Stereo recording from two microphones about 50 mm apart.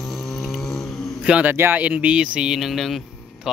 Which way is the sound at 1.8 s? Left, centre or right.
Right.